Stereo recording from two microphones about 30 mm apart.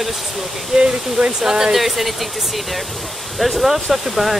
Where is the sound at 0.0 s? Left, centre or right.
Centre.